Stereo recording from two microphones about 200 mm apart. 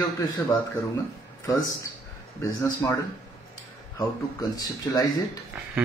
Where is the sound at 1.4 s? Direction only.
15° left (ahead or behind).